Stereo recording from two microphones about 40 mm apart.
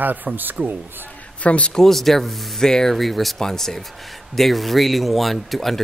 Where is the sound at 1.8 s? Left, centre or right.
Centre.